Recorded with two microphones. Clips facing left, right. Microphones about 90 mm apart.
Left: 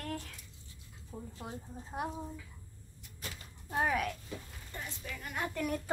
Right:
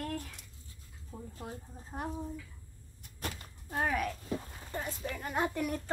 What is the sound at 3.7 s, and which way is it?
Speech, centre (ahead or behind).